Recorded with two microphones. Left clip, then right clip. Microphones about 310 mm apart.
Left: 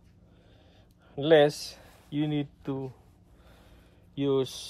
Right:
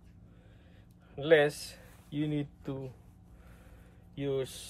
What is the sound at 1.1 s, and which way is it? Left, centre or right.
Speech, centre.